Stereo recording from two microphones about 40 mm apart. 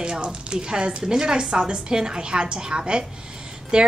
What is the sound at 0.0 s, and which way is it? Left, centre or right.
A woman's voice, right.